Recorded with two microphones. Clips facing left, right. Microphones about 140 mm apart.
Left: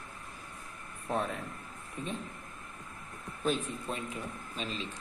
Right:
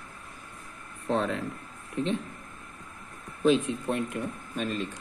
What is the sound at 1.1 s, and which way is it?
Speech, 90° right.